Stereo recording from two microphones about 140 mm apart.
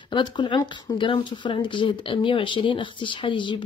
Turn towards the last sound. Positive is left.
turn(degrees=35)  # may be behind; listen again after turning